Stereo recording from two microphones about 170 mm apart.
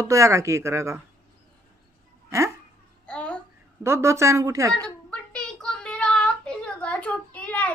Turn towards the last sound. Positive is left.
turn(degrees=10)  # may be behind; listen again after turning